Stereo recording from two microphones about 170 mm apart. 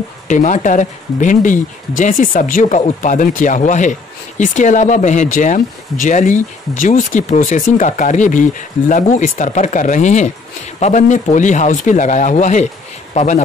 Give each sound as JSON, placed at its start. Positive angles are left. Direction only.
{"t": 0.3, "sound": "speech", "side_deg": 45}